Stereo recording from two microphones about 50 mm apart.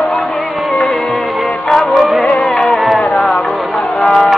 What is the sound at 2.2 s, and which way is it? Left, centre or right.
Music, centre.